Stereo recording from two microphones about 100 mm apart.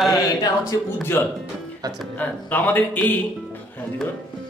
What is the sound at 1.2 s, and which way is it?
Speech, 25° left (ahead or behind).